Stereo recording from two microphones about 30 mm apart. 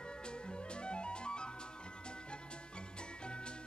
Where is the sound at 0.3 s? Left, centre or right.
Left.